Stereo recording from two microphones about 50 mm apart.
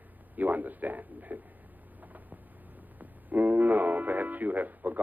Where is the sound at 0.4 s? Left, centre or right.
Right.